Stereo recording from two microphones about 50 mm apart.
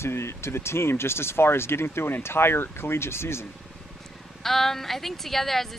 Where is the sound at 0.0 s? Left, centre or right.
Left.